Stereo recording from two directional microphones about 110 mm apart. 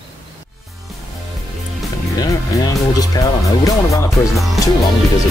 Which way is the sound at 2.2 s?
35° left (ahead or behind).